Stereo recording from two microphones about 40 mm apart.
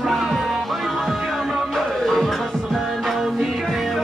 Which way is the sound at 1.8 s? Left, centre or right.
Centre.